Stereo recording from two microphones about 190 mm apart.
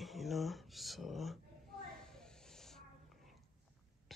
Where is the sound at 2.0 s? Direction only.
5° left (ahead or behind).